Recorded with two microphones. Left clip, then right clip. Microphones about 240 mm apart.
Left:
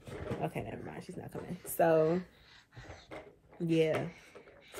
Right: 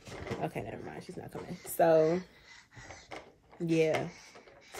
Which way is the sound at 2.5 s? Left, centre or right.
Right.